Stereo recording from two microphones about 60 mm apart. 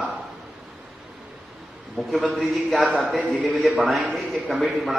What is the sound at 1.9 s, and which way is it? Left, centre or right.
Speech, centre.